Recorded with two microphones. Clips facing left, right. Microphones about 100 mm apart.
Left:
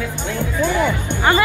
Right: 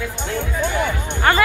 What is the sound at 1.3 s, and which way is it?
Music, 15° left (ahead or behind).